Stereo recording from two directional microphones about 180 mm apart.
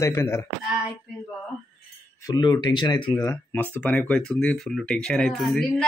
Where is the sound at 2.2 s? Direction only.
25° left (ahead or behind).